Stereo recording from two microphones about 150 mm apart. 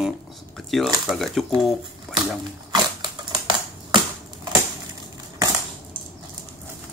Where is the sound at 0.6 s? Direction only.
Centre (ahead or behind).